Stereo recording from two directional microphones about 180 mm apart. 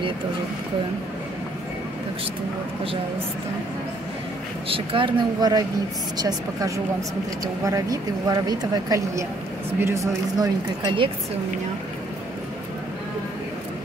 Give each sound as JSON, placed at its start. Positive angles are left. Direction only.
{"t": 4.6, "sound": "speech", "side_deg": -30}